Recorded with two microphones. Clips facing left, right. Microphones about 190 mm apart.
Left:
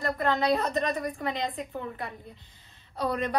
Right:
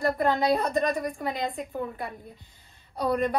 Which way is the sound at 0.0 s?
5° right (ahead or behind).